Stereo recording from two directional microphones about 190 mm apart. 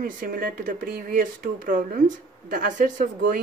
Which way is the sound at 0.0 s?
50° right (ahead or behind).